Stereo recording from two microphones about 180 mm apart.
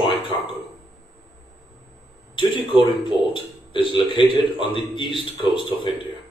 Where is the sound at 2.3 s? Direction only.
25° left (ahead or behind).